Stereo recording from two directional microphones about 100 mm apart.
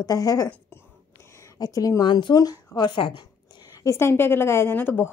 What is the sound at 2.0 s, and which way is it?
A woman's voice, 50° left (ahead or behind).